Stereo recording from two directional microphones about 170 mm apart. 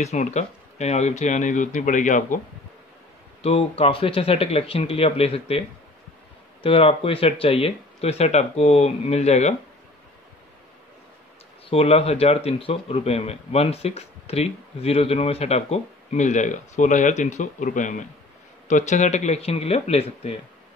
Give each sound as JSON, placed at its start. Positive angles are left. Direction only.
{"t": 0.0, "sound": "speech", "side_deg": 40}
{"t": 3.4, "sound": "speech", "side_deg": 35}
{"t": 6.6, "sound": "speech", "side_deg": 35}
{"t": 11.7, "sound": "speech", "side_deg": 35}